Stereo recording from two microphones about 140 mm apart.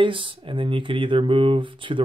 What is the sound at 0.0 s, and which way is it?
Speech, 35° right (ahead or behind).